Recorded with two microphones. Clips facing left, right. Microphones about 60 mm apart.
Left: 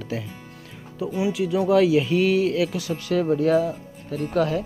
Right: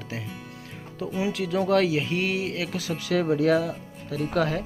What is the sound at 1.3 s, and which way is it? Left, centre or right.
Speech, right.